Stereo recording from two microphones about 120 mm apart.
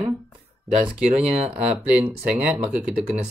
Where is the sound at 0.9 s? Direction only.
10° right (ahead or behind).